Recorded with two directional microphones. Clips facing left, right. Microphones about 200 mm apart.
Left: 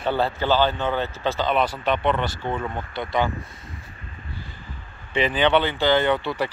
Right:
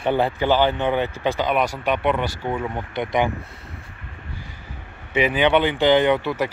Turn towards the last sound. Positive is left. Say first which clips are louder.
# right 3 dB
turn(degrees=-10)  # may be behind; listen again after turning